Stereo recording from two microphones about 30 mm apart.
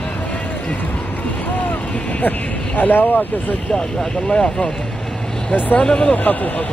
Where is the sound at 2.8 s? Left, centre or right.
Left.